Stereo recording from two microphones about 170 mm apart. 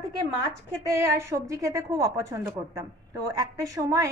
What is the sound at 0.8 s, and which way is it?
A woman's voice, 15° right (ahead or behind).